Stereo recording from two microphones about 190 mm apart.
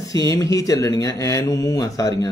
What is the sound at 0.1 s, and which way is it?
Speech, 20° left (ahead or behind).